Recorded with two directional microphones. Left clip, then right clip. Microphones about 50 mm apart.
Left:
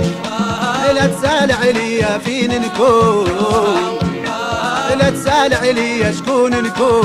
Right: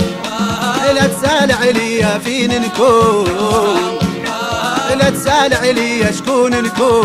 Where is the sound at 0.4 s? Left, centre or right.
Right.